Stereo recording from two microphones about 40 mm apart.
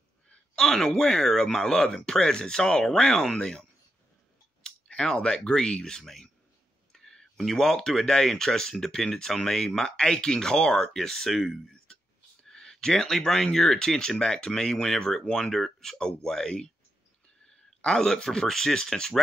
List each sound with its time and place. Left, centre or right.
0.6 s speech: centre
4.9 s speech: left
6.9 s a sound: centre
7.5 s speech: centre
11.6 s a sound: centre
12.4 s speech: centre